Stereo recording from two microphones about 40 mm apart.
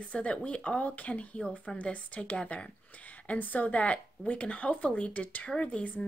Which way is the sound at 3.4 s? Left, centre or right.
Left.